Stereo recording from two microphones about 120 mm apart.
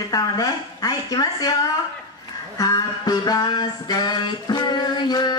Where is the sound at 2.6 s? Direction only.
35° left (ahead or behind).